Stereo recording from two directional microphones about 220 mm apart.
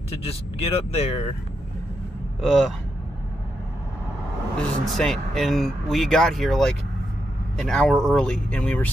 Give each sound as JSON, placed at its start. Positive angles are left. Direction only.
{"t": 0.2, "sound": "speech", "side_deg": 25}
{"t": 2.4, "sound": "speech", "side_deg": 0}
{"t": 4.8, "sound": "speech", "side_deg": 0}